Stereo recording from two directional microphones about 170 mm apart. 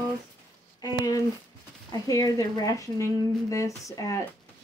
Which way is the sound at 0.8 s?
20° left (ahead or behind).